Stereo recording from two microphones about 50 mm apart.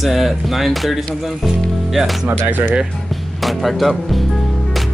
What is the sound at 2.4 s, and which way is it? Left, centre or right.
Speech, right.